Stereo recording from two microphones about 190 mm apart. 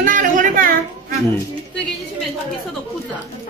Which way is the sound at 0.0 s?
45° right (ahead or behind).